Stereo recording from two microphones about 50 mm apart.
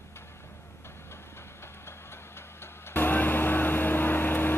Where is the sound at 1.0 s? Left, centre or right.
Left.